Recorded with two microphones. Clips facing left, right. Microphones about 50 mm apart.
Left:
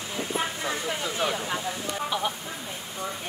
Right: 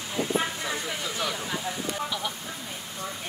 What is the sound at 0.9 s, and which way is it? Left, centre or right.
Speech, left.